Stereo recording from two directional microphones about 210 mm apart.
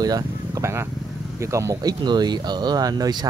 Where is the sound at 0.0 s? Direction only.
15° right (ahead or behind).